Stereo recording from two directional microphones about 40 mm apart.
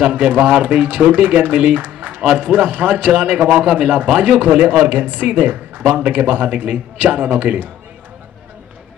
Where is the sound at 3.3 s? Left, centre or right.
Right.